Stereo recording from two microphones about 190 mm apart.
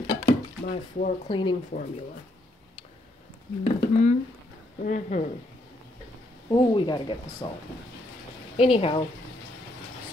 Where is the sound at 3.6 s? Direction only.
40° left (ahead or behind).